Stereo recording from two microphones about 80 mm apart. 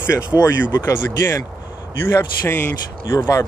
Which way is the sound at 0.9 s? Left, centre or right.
Left.